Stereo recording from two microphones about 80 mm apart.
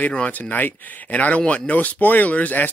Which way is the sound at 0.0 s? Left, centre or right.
Centre.